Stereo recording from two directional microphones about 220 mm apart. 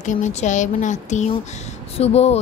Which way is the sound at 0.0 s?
35° left (ahead or behind).